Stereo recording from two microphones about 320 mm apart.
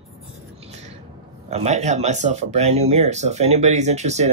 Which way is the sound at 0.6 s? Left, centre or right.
Right.